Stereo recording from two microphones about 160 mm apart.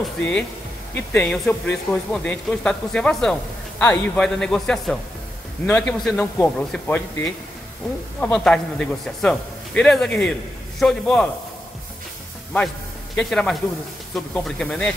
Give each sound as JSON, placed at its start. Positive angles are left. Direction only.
{"t": 0.2, "sound": "a man's voice", "side_deg": 5}
{"t": 12.5, "sound": "a man's voice", "side_deg": 0}